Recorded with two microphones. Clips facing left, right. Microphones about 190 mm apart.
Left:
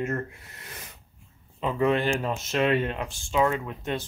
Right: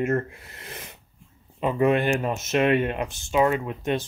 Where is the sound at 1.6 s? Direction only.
15° right (ahead or behind).